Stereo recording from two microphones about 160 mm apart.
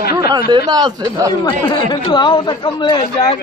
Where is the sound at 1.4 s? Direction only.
30° left (ahead or behind).